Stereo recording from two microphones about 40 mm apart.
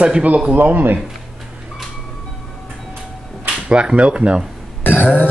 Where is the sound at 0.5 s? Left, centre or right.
Right.